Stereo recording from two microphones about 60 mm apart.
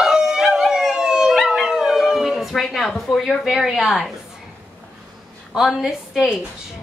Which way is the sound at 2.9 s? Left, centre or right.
Centre.